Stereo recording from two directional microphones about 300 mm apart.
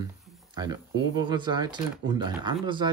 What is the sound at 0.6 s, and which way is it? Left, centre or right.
Speech, centre.